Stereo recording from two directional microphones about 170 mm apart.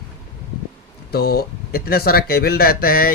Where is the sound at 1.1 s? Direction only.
65° left (ahead or behind).